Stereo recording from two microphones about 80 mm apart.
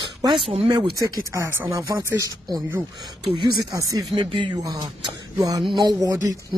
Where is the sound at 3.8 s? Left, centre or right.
Right.